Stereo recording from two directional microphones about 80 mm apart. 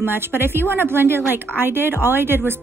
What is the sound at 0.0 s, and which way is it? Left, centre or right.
A woman's voice, right.